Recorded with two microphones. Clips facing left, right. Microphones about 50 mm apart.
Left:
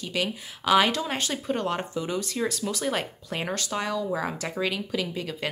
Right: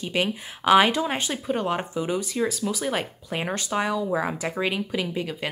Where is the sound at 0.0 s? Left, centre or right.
Right.